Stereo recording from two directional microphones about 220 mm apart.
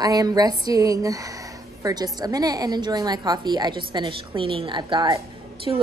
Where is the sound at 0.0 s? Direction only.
15° right (ahead or behind).